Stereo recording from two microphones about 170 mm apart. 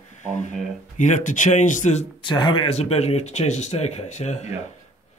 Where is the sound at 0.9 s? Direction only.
45° left (ahead or behind).